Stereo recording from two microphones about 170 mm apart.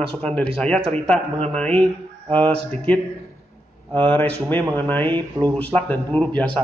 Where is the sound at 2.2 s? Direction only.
30° right (ahead or behind).